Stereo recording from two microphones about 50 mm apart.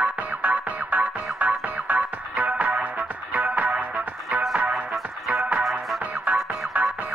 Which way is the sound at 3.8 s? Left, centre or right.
Right.